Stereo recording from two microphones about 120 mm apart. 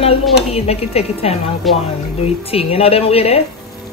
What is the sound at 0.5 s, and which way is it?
Speech, 60° left (ahead or behind).